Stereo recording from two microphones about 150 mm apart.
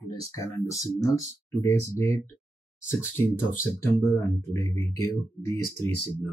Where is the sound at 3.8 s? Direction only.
20° left (ahead or behind).